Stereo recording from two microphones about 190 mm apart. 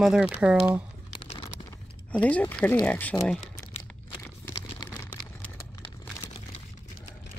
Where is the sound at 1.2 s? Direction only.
30° left (ahead or behind).